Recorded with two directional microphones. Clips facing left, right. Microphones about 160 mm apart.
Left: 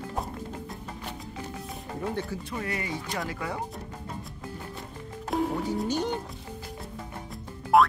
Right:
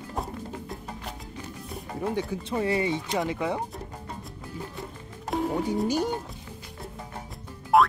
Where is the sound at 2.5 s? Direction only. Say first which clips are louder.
Right 7 dB; 25° right (ahead or behind).